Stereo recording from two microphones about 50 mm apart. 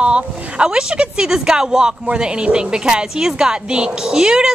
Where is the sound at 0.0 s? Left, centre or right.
Right.